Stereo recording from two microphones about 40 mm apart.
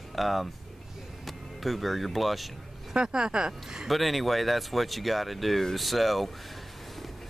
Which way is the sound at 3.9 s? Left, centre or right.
Centre.